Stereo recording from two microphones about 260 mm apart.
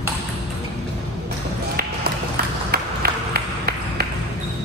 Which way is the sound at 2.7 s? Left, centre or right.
Right.